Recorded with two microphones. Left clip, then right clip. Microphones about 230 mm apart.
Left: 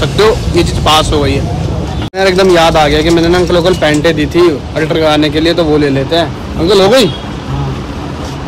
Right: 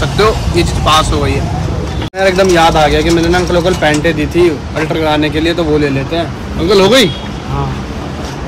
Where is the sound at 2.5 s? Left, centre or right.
Centre.